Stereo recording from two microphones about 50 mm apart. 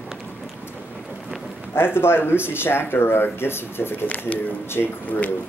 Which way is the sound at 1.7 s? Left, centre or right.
Left.